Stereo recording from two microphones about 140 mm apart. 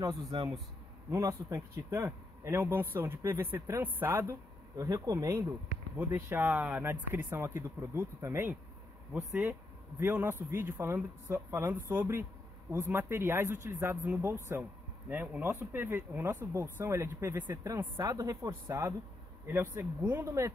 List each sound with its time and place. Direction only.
0.0 s speech: 25° right (ahead or behind)
9.3 s speech: 5° right (ahead or behind)
9.9 s speech: 15° right (ahead or behind)